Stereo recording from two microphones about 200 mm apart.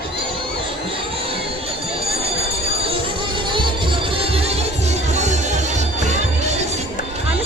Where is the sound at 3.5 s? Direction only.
25° right (ahead or behind).